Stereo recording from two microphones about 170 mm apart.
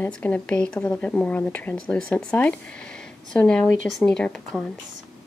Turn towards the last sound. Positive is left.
turn(degrees=5)  # may be behind; listen again after turning